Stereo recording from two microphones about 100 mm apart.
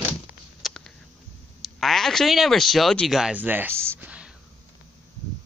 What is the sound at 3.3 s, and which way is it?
Speech, 20° right (ahead or behind).